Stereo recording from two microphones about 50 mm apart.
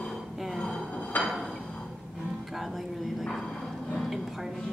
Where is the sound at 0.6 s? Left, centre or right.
Centre.